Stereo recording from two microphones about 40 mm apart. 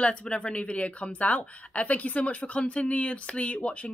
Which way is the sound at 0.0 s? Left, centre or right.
Left.